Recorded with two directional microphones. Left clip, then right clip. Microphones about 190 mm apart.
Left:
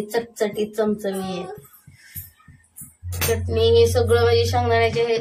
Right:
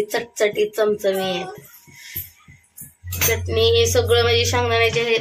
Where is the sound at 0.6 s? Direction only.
35° right (ahead or behind).